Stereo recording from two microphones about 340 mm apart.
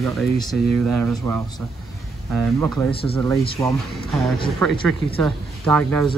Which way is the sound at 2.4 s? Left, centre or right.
Centre.